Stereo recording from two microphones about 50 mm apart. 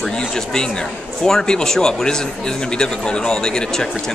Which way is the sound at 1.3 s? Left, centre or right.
Centre.